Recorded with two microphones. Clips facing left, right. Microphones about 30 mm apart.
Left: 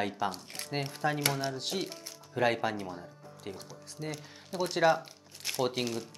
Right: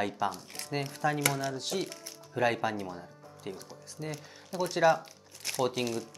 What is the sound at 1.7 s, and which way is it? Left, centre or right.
Speech, centre.